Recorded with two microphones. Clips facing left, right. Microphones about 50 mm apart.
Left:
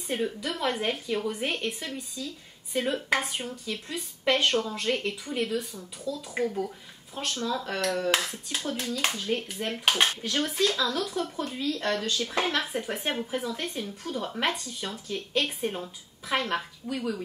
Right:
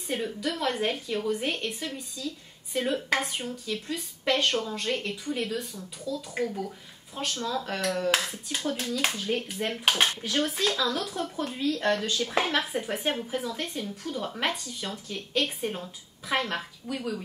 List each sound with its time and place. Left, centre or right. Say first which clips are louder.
0.1 s a woman's voice: even; centre